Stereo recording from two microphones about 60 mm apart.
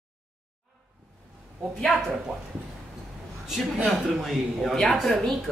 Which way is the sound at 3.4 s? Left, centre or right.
Centre.